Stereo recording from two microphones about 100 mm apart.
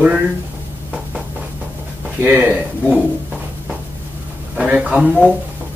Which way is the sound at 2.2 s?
15° right (ahead or behind).